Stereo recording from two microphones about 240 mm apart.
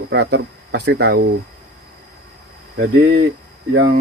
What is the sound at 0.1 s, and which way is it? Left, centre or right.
Speech, right.